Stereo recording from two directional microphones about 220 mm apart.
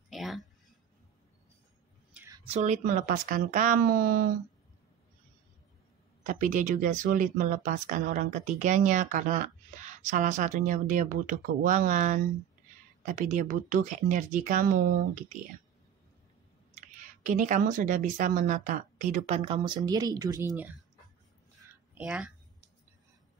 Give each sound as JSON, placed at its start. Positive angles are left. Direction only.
{"t": 0.1, "sound": "a sound", "side_deg": 0}
{"t": 2.1, "sound": "a sound", "side_deg": -15}
{"t": 2.4, "sound": "speech", "side_deg": -30}
{"t": 6.2, "sound": "speech", "side_deg": -35}
{"t": 16.7, "sound": "speech", "side_deg": -35}
{"t": 21.9, "sound": "speech", "side_deg": -5}